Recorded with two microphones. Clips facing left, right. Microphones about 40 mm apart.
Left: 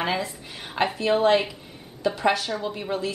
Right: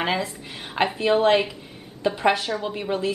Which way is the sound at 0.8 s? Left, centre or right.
Right.